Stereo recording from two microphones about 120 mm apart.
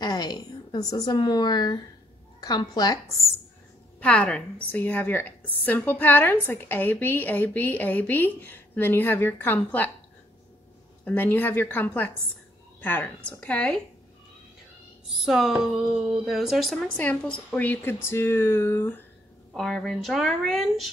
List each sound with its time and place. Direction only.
0.0 s a woman's voice: 35° left (ahead or behind)
4.0 s a woman's voice: 10° left (ahead or behind)
11.1 s a woman's voice: 15° left (ahead or behind)
15.1 s speech: centre (ahead or behind)
16.8 s a woman's voice: 10° left (ahead or behind)
19.5 s speech: 5° left (ahead or behind)